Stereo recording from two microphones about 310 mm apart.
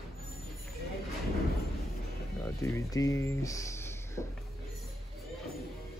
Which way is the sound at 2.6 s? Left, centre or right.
Centre.